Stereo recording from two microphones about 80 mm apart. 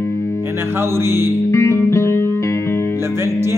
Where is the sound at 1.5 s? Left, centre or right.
Left.